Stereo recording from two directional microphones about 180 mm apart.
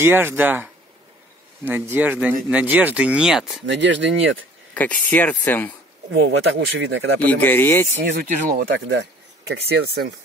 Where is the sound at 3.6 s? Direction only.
85° right.